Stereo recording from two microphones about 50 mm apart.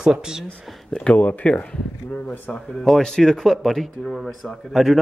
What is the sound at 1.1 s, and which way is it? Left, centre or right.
Speech, left.